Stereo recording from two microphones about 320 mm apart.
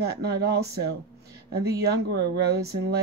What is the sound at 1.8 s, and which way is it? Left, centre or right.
Speech, right.